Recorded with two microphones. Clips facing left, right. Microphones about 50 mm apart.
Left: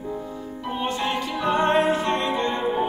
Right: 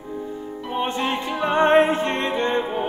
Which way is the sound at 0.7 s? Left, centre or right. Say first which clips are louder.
Right 2 dB; right.